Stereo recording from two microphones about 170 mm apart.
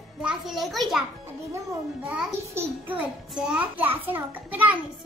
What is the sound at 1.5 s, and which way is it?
Speech, 20° right (ahead or behind).